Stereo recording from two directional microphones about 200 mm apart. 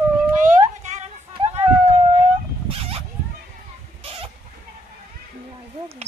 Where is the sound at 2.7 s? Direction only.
30° right (ahead or behind).